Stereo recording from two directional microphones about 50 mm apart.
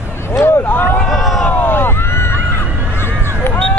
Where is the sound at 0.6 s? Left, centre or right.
Left.